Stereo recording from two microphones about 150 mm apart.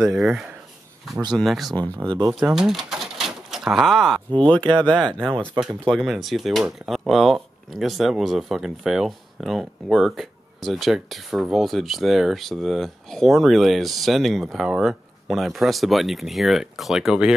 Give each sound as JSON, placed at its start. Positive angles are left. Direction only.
{"t": 0.1, "sound": "speech", "side_deg": -5}
{"t": 2.0, "sound": "speech", "side_deg": -15}
{"t": 2.3, "sound": "pigeon", "side_deg": -5}
{"t": 4.4, "sound": "speech", "side_deg": 5}